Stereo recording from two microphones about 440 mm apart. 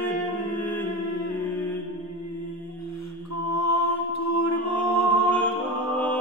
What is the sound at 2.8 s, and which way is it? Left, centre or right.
Mantra, left.